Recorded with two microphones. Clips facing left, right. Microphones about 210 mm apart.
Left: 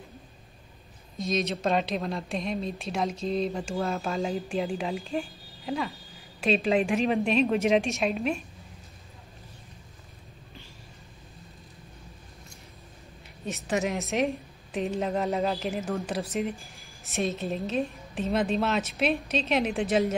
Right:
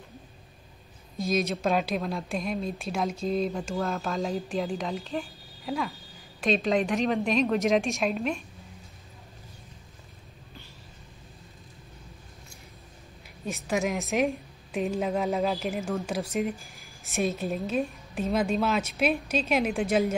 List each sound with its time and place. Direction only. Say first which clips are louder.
1.1 s speech: right 1 dB; 5° right (ahead or behind)
6.4 s speech: left 1 dB; 5° left (ahead or behind)
13.5 s speech: even; centre (ahead or behind)